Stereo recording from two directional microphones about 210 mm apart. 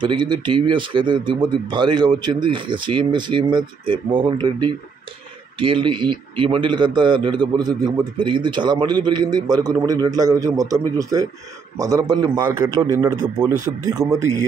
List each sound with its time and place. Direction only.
0.0 s a man's voice: 20° right (ahead or behind)